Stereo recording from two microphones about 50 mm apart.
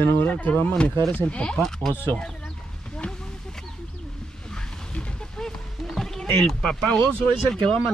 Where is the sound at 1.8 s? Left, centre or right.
Right.